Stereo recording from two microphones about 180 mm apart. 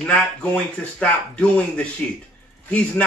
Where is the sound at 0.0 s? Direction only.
5° left (ahead or behind).